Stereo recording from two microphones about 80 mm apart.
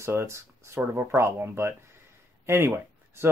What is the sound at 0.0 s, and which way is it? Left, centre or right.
Speech, right.